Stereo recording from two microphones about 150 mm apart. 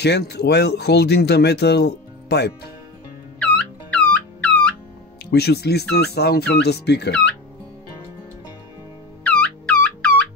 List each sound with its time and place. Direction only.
0.0 s speech: 90° left
3.3 s music: 10° left (ahead or behind)
5.3 s speech: 90° left
9.2 s music: 10° left (ahead or behind)